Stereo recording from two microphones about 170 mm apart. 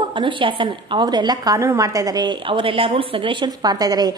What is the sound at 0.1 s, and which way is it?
A woman's voice, 30° right (ahead or behind).